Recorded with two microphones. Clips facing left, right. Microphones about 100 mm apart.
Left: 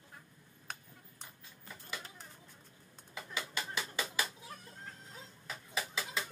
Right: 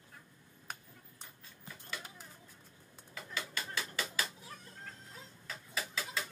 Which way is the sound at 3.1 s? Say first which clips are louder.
Left 1 dB; 20° left (ahead or behind).